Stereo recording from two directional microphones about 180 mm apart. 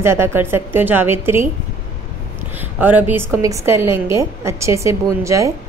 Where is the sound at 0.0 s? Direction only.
15° right (ahead or behind).